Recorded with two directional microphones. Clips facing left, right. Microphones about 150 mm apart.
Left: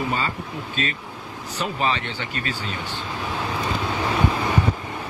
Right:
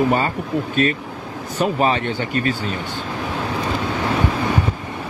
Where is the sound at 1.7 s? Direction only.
40° right (ahead or behind).